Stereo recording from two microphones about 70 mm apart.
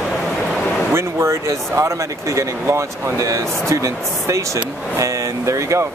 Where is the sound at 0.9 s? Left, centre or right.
Right.